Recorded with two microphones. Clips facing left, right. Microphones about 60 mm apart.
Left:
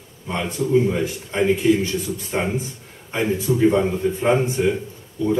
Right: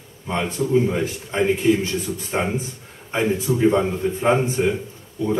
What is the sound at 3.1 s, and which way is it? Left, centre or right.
Speech, right.